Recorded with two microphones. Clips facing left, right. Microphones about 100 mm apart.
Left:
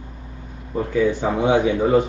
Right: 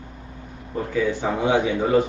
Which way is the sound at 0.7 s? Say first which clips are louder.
Left 4 dB; 20° left (ahead or behind).